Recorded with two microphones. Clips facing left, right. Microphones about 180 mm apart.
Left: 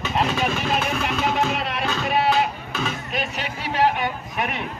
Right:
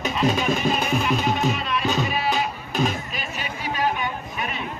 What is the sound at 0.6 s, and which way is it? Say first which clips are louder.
Music: right 1 dB; 75° left (ahead or behind).